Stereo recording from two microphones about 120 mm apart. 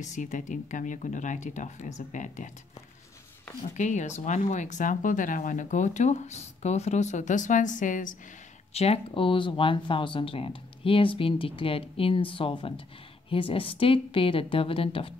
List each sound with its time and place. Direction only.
0.0 s speech: 90° left
3.7 s speech: 90° left
8.7 s speech: 60° left (ahead or behind)